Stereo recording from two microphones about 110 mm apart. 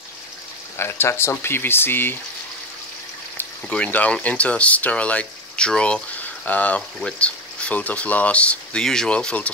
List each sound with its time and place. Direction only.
0.7 s speech: 20° left (ahead or behind)
3.6 s speech: 10° left (ahead or behind)